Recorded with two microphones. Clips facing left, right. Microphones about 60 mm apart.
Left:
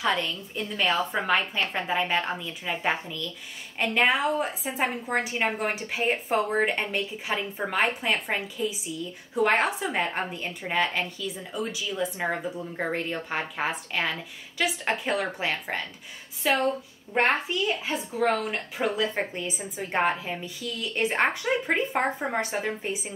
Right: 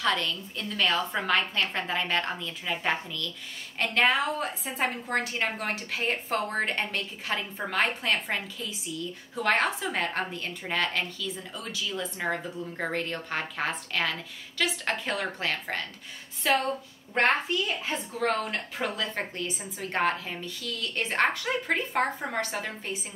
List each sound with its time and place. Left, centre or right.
0.0 s a woman's voice: centre
17.8 s a woman's voice: centre